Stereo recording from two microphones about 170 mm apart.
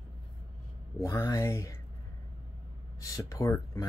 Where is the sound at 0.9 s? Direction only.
15° left (ahead or behind).